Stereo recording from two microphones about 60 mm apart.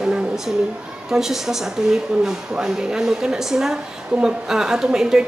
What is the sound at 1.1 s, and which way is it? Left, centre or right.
A woman's voice, centre.